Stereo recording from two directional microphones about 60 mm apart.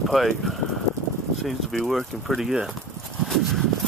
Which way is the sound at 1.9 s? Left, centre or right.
Centre.